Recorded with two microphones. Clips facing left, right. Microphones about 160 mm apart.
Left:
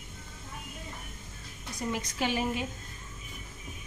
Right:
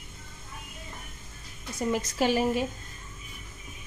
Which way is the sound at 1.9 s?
45° right (ahead or behind).